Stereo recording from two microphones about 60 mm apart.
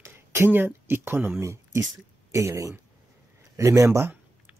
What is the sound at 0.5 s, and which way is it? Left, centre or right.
Speech, right.